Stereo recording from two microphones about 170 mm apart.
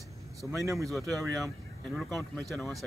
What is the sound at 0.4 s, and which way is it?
Speech, 15° left (ahead or behind).